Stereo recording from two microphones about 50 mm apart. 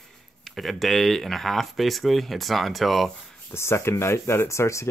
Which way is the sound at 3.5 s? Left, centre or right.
Left.